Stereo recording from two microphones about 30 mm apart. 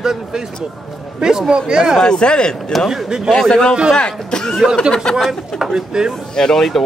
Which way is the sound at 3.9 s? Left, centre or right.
Left.